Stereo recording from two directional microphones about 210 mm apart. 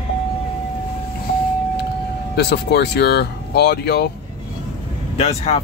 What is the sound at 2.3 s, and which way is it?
Speech, 50° left (ahead or behind).